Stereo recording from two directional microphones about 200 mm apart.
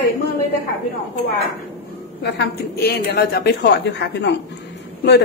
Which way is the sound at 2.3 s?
55° left (ahead or behind).